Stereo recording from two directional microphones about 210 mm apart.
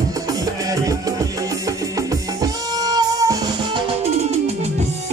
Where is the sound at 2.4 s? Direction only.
20° right (ahead or behind).